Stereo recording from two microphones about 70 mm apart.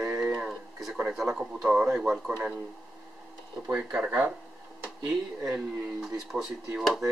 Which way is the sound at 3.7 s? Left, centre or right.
Centre.